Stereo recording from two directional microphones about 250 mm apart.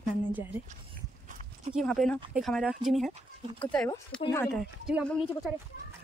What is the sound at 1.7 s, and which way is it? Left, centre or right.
Speech, centre.